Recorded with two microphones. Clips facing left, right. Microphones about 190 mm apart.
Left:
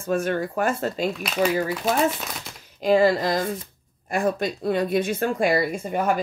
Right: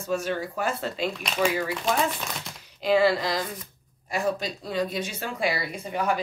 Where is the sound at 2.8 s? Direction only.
45° left (ahead or behind).